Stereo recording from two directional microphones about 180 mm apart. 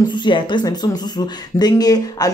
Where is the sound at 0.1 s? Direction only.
25° left (ahead or behind).